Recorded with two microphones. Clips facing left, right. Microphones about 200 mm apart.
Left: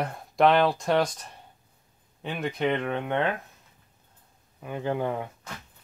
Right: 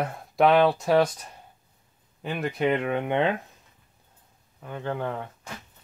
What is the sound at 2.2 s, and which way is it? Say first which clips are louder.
Speech: right 2 dB; 5° right (ahead or behind).